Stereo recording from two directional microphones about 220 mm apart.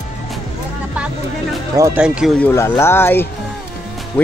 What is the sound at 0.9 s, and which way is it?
Speech, 5° right (ahead or behind).